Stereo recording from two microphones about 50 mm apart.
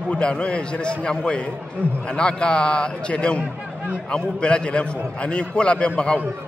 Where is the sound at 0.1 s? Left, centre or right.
Left.